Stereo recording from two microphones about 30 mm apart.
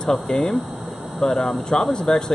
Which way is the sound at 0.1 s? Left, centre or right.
Centre.